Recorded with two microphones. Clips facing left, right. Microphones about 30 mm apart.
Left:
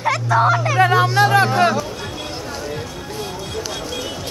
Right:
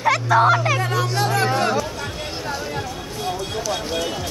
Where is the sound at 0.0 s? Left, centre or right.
Centre.